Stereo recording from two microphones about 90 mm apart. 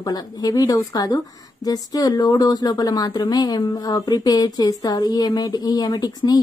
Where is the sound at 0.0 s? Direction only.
50° left (ahead or behind).